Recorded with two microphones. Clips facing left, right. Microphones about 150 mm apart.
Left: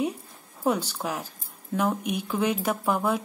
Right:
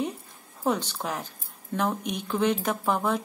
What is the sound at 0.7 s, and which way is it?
Speech, 10° left (ahead or behind).